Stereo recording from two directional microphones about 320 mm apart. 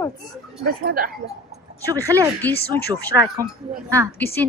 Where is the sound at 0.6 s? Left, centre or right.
Right.